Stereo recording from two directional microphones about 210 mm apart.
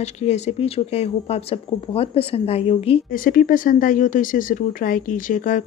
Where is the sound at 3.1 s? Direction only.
40° left (ahead or behind).